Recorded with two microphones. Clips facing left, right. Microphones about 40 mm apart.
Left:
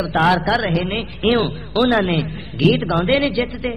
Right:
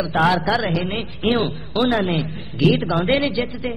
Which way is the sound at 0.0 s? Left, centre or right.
Centre.